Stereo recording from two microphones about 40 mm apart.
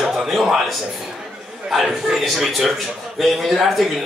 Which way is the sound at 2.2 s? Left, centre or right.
Centre.